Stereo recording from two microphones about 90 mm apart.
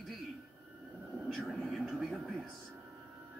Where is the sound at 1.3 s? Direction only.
Centre (ahead or behind).